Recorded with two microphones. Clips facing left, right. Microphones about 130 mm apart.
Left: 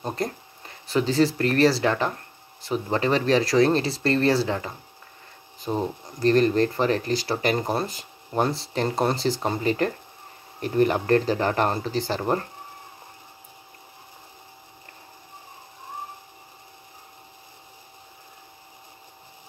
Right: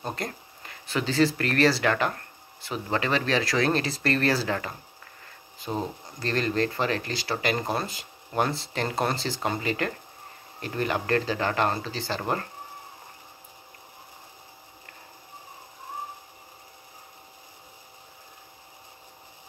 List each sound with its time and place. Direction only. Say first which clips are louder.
0.1 s speech: left 5 dB; 30° left (ahead or behind)
5.7 s speech: left 4 dB; centre (ahead or behind)
6.1 s speech: left 8 dB; 40° left (ahead or behind)
12.2 s speech: left 2 dB; 25° left (ahead or behind)